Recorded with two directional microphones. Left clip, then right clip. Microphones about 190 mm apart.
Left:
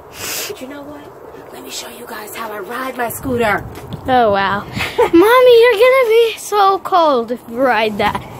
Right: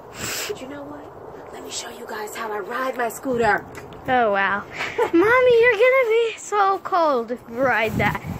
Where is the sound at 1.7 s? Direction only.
40° left (ahead or behind).